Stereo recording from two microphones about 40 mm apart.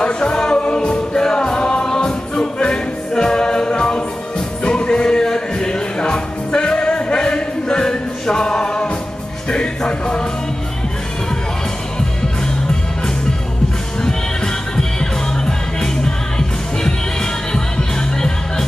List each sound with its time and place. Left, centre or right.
0.0 s music: left
14.0 s music: centre